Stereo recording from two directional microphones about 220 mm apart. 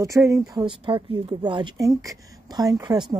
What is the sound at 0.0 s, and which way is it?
Speech, 15° right (ahead or behind).